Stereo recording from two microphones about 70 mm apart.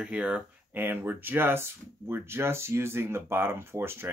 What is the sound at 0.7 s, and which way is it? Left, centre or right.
Speech, right.